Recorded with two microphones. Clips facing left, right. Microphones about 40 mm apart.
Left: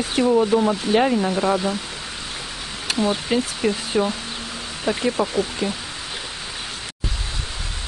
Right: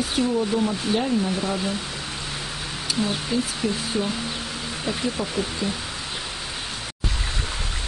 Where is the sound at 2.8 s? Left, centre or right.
Left.